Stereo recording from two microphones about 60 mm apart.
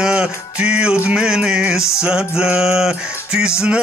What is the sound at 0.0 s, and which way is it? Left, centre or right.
Music, centre.